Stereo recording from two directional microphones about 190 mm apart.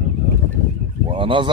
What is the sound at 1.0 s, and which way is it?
Speech, 25° right (ahead or behind).